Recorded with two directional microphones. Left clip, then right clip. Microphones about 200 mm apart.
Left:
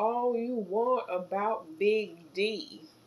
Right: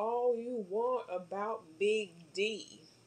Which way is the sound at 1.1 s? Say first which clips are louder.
Left 7 dB; 30° right (ahead or behind).